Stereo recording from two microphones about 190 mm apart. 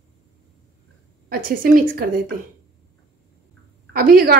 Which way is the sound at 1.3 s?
50° right (ahead or behind).